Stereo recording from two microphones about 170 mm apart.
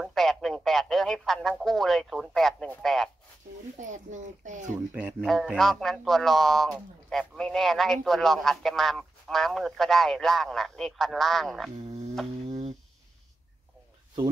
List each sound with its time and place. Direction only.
0.0 s speech: centre (ahead or behind)
3.9 s speech: 45° right (ahead or behind)
4.9 s speech: centre (ahead or behind)